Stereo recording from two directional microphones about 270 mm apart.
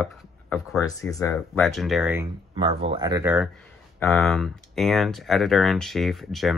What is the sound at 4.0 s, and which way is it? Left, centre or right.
Speech, centre.